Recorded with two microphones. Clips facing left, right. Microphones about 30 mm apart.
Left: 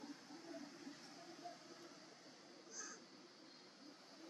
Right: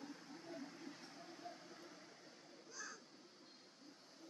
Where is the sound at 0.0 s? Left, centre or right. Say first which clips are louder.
Right 1 dB; centre.